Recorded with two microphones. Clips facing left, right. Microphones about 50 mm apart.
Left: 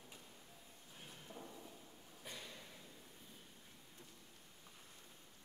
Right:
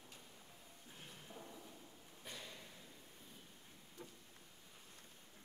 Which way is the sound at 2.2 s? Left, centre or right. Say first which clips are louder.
Even; centre.